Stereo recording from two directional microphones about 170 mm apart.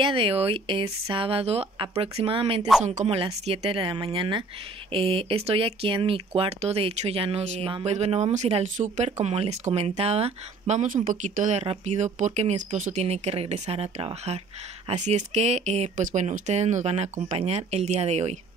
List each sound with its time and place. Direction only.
0.0 s speech: 30° right (ahead or behind)
2.8 s speech: 45° right (ahead or behind)
3.4 s speech: 30° right (ahead or behind)